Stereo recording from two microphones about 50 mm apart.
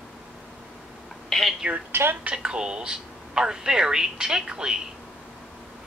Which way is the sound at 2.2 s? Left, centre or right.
Centre.